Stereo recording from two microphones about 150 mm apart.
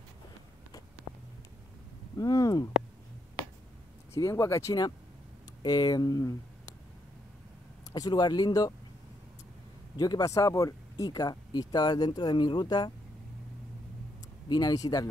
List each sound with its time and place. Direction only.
2.1 s a sound: 25° left (ahead or behind)
4.1 s speech: 20° left (ahead or behind)
7.9 s speech: 25° left (ahead or behind)
9.9 s speech: 25° left (ahead or behind)
14.5 s speech: 25° left (ahead or behind)